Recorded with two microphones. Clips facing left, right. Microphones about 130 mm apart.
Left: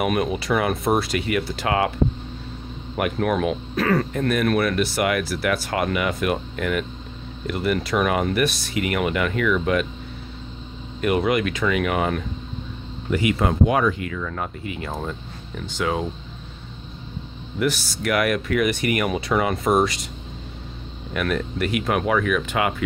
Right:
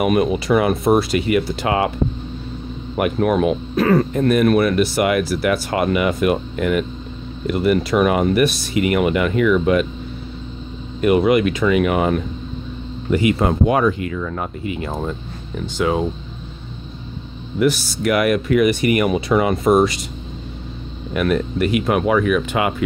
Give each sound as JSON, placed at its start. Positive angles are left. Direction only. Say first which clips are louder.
{"t": 0.0, "sound": "speech", "louder": "right 5 dB", "side_deg": -10}
{"t": 3.0, "sound": "speech", "louder": "right 5 dB", "side_deg": -20}
{"t": 11.0, "sound": "speech", "louder": "right 6 dB", "side_deg": -10}
{"t": 13.1, "sound": "speech", "louder": "right 4 dB", "side_deg": -30}
{"t": 17.6, "sound": "speech", "louder": "right 6 dB", "side_deg": -10}
{"t": 21.1, "sound": "speech", "louder": "right 6 dB", "side_deg": -10}